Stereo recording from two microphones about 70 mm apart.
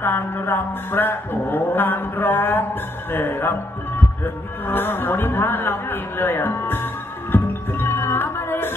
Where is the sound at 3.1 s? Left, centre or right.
Left.